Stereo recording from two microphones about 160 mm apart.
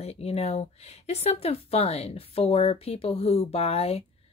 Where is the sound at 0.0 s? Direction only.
40° left (ahead or behind).